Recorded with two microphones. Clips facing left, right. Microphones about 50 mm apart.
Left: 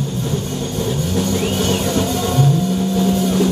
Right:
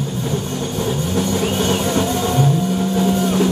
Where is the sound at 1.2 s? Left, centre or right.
Right.